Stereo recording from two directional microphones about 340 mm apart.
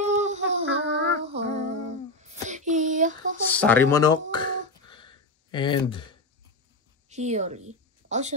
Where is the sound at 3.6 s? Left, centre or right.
Centre.